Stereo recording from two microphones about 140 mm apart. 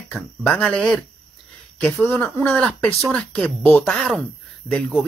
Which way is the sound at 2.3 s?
5° left (ahead or behind).